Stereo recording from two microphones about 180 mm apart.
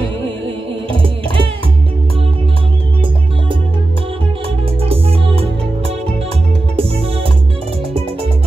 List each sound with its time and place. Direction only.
0.8 s music: 30° right (ahead or behind)
4.8 s music: 30° right (ahead or behind)